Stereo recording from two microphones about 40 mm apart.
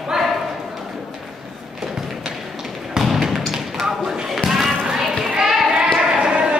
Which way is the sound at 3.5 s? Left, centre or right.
Centre.